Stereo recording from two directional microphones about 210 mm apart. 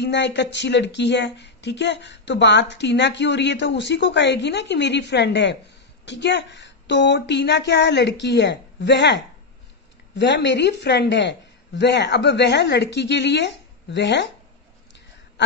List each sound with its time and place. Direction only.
0.0 s speech: 55° left (ahead or behind)